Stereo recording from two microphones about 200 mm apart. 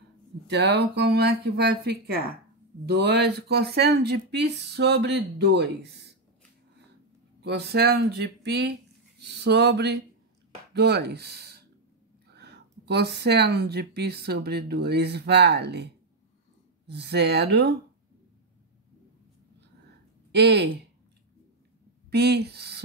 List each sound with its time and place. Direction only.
0.5 s speech: 55° right (ahead or behind)
7.4 s speech: 55° right (ahead or behind)
20.2 s speech: 55° right (ahead or behind)
22.1 s speech: 55° right (ahead or behind)